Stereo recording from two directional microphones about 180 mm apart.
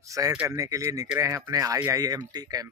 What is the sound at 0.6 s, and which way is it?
Speech, 20° right (ahead or behind).